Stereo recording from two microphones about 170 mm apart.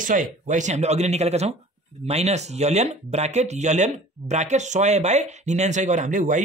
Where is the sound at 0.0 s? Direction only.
50° right (ahead or behind).